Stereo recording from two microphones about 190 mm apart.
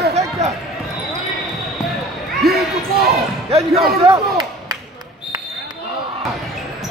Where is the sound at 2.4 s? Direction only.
55° right (ahead or behind).